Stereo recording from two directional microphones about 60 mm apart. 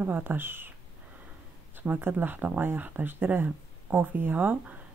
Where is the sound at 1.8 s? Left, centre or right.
Right.